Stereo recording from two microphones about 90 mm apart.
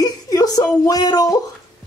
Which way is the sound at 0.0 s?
40° left (ahead or behind).